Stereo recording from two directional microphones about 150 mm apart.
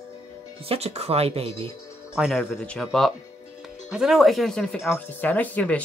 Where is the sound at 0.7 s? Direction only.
45° right (ahead or behind).